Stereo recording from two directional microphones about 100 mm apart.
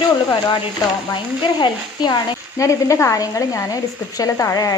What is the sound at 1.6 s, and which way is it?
Speech, 45° left (ahead or behind).